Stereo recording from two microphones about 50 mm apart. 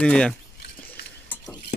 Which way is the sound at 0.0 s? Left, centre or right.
Left.